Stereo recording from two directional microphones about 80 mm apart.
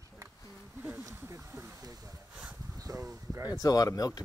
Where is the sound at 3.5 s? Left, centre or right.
Left.